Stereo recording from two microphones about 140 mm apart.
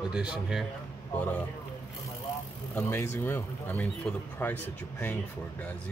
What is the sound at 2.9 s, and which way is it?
Speech, 20° left (ahead or behind).